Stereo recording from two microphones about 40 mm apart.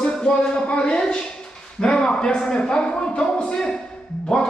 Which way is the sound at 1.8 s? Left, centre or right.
Left.